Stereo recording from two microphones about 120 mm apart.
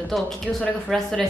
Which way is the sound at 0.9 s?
5° left (ahead or behind).